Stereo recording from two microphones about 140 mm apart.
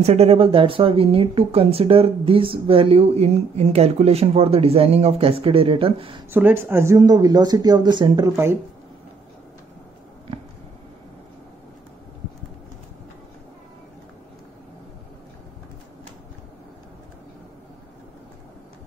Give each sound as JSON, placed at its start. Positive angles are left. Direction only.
{"t": 0.0, "sound": "speech", "side_deg": -50}
{"t": 6.3, "sound": "speech", "side_deg": -15}
{"t": 7.0, "sound": "speech", "side_deg": -30}